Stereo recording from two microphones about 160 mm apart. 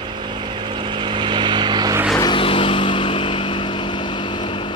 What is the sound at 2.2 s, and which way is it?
Vehicle, 30° left (ahead or behind).